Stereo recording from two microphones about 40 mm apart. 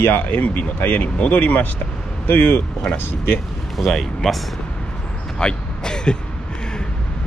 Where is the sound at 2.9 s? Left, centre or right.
Left.